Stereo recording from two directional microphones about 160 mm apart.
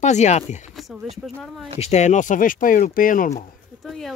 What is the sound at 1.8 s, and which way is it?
Speech, 45° left (ahead or behind).